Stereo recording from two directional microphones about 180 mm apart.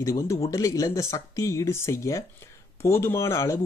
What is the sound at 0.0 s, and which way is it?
Speech, 15° left (ahead or behind).